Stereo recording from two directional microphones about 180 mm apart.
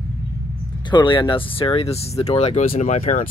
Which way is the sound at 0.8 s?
25° left (ahead or behind).